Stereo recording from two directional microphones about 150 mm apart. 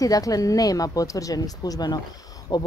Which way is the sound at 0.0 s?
25° left (ahead or behind).